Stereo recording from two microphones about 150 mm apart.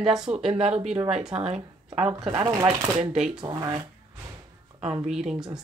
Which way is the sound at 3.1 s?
5° right (ahead or behind).